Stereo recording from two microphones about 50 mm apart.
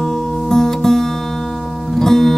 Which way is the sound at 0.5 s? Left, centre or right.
Centre.